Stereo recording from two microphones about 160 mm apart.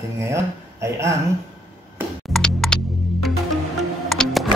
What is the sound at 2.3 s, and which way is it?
Music, 5° left (ahead or behind).